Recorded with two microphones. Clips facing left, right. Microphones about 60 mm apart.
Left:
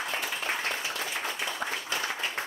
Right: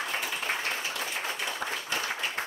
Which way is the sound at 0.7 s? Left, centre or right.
Left.